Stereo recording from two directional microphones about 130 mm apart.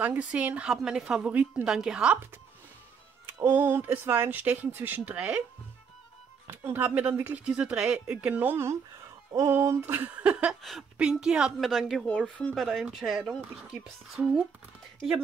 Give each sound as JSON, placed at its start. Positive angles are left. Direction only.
{"t": 0.0, "sound": "speech", "side_deg": -10}
{"t": 3.4, "sound": "speech", "side_deg": -15}
{"t": 6.4, "sound": "speech", "side_deg": -15}
{"t": 9.3, "sound": "music", "side_deg": -25}
{"t": 9.8, "sound": "speech", "side_deg": -15}
{"t": 10.6, "sound": "speech", "side_deg": 0}
{"t": 12.1, "sound": "speech", "side_deg": 10}